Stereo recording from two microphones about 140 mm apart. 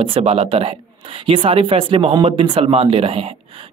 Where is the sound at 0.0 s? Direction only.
40° right (ahead or behind).